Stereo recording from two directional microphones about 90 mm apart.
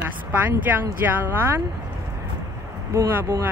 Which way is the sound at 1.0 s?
30° right (ahead or behind).